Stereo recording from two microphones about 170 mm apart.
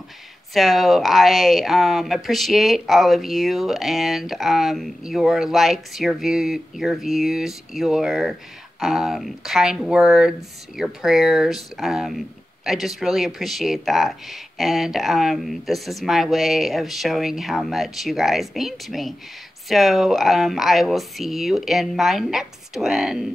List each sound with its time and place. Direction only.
0.6 s speech: centre (ahead or behind)